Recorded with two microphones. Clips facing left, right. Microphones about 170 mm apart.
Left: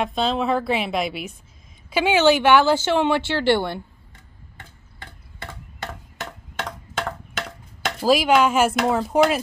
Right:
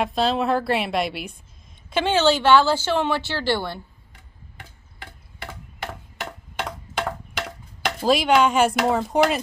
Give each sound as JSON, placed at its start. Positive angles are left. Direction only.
{"t": 0.0, "sound": "speech", "side_deg": 0}
{"t": 1.9, "sound": "speech", "side_deg": 10}
{"t": 4.6, "sound": "tick-tock", "side_deg": -10}
{"t": 7.0, "sound": "a sound", "side_deg": -10}
{"t": 8.0, "sound": "speech", "side_deg": 5}